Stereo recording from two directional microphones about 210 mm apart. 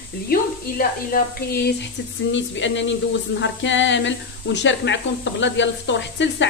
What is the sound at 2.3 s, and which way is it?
Speech, 60° left (ahead or behind).